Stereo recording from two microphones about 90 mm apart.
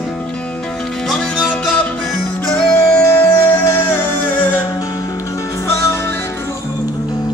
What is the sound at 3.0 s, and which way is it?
Music, 30° left (ahead or behind).